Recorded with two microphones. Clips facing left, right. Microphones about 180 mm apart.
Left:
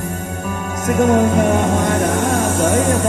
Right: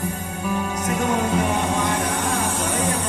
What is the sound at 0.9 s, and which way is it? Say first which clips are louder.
Music: left 10 dB; 45° left (ahead or behind).